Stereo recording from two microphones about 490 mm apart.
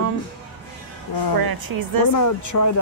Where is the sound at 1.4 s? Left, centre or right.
Right.